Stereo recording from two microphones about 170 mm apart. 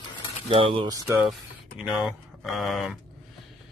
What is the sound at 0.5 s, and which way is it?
Speech, 30° right (ahead or behind).